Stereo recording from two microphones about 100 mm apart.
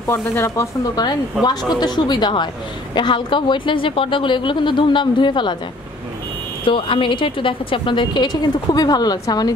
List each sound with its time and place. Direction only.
0.0 s speech: 30° left (ahead or behind)
1.8 s a woman's voice: 45° left (ahead or behind)
6.6 s a woman's voice: 60° left (ahead or behind); by 9.5 s 40° left (ahead or behind)